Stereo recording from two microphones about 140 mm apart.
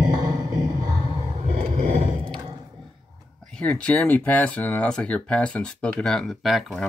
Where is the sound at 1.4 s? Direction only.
50° right (ahead or behind).